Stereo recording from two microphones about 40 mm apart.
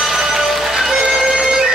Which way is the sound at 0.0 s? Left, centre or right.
Centre.